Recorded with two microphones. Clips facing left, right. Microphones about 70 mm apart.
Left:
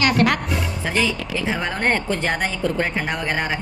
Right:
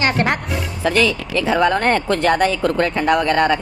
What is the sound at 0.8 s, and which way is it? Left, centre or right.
Speech, right.